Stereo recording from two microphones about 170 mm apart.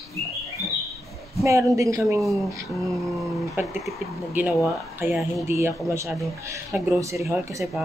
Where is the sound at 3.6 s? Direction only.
15° right (ahead or behind).